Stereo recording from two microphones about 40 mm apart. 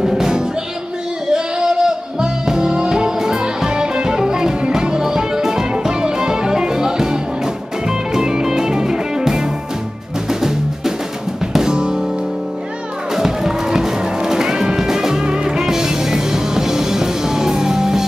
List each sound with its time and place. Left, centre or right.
0.0 s music: centre
11.5 s music: centre
13.1 s music: centre